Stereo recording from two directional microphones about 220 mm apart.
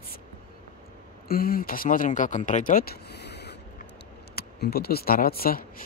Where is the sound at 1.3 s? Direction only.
40° left (ahead or behind).